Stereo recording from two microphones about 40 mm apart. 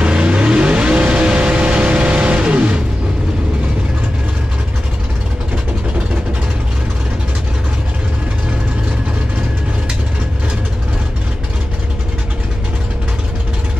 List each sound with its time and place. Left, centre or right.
0.0 s vehicle: right